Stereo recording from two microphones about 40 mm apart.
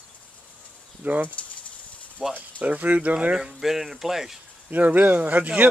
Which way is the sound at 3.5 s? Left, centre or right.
Centre.